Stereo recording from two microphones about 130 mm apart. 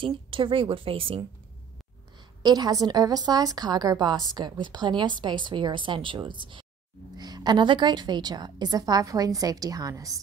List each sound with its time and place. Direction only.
0.0 s a woman's voice: 40° right (ahead or behind)
2.4 s a woman's voice: 30° right (ahead or behind)